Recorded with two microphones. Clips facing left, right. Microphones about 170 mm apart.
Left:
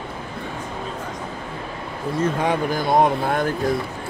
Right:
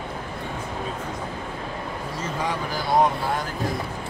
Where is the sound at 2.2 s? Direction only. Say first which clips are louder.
Left 8 dB; 55° left (ahead or behind).